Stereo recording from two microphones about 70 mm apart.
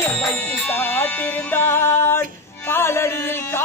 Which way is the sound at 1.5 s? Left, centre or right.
Left.